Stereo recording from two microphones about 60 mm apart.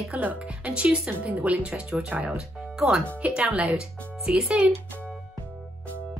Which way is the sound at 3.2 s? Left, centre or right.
Right.